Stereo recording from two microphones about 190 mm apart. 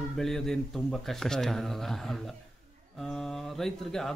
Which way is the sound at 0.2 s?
Centre (ahead or behind).